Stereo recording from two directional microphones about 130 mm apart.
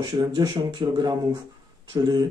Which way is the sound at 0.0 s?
35° right (ahead or behind).